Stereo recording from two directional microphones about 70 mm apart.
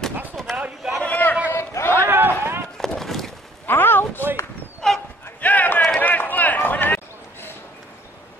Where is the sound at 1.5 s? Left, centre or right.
Left.